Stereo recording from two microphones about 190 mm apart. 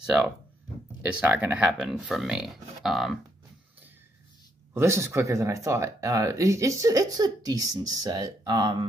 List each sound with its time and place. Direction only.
0.0 s speech: 5° right (ahead or behind)
4.7 s speech: 15° right (ahead or behind)